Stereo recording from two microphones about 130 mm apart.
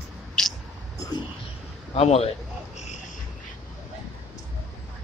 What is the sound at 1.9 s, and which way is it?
Speech, 55° left (ahead or behind).